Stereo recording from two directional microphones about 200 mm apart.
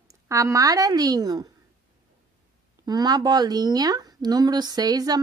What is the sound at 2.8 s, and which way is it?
Speech, 20° right (ahead or behind).